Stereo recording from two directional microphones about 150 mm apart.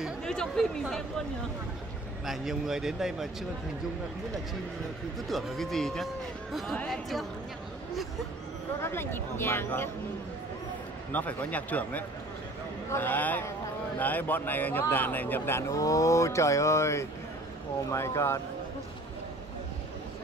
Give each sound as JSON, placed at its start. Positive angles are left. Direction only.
{"t": 0.0, "sound": "speech", "side_deg": 5}
{"t": 2.2, "sound": "speech", "side_deg": 0}
{"t": 5.3, "sound": "speech", "side_deg": 0}
{"t": 8.8, "sound": "a man's voice", "side_deg": 15}
{"t": 11.1, "sound": "a man's voice", "side_deg": 10}